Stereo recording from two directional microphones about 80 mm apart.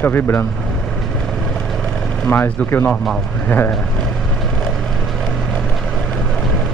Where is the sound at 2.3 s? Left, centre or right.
Left.